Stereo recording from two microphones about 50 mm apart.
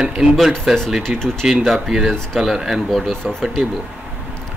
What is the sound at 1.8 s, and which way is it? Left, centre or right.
Speech, centre.